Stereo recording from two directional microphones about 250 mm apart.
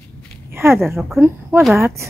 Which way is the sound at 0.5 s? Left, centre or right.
Centre.